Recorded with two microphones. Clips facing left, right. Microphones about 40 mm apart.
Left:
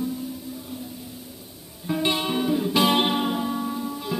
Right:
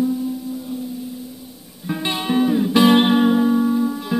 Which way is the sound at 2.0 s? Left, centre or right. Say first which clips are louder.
Right 2 dB; right.